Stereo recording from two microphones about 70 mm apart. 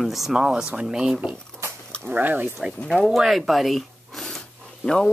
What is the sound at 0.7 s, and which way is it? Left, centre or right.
Speech, centre.